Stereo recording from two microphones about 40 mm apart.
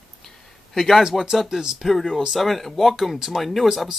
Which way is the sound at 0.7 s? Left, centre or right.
Centre.